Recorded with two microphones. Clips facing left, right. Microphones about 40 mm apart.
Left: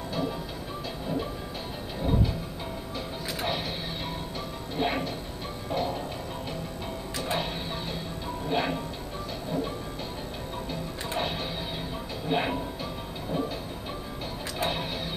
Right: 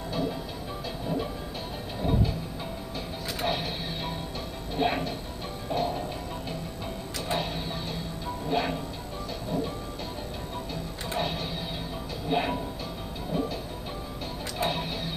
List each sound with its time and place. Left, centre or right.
0.1 s music: centre
3.3 s music: centre
4.7 s music: centre
8.5 s music: centre
10.7 s music: centre
14.6 s music: centre